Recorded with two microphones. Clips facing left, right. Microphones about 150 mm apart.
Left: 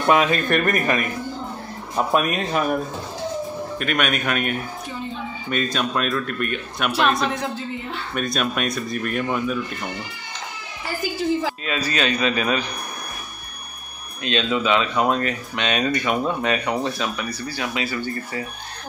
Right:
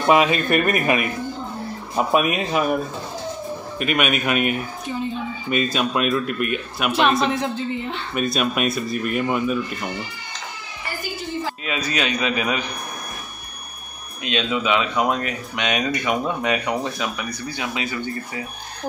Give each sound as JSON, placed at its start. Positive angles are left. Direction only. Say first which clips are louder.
{"t": 0.0, "sound": "speech", "louder": "right 1 dB", "side_deg": -5}
{"t": 11.6, "sound": "speech", "louder": "left 1 dB", "side_deg": -15}
{"t": 14.2, "sound": "speech", "louder": "left 1 dB", "side_deg": -10}